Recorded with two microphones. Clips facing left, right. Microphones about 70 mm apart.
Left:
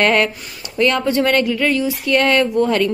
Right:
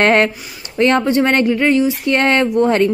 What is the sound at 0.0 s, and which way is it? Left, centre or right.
Speech, right.